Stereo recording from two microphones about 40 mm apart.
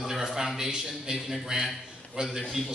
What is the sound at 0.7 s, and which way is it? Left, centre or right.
Speech, centre.